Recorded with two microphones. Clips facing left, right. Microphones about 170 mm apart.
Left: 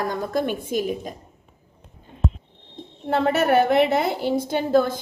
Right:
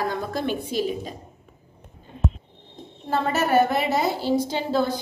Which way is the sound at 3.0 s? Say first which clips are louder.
Left 4 dB; 60° left (ahead or behind).